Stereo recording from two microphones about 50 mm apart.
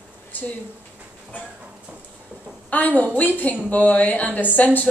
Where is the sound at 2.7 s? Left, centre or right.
Left.